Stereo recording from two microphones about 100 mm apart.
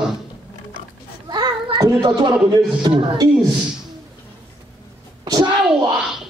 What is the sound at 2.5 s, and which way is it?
Speech, 45° right (ahead or behind).